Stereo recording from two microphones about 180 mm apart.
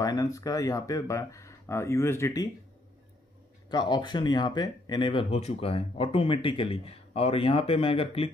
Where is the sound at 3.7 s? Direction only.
25° left (ahead or behind).